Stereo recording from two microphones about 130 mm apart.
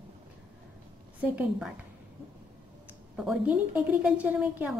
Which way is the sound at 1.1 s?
10° right (ahead or behind).